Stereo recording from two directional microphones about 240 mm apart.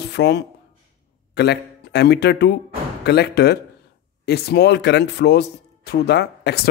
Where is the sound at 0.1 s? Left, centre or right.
Left.